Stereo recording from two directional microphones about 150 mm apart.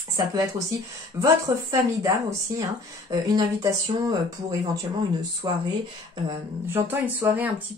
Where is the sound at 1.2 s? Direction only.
25° right (ahead or behind).